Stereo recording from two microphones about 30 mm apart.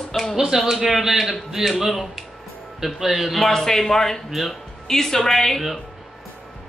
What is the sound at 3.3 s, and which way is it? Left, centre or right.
Speech, centre.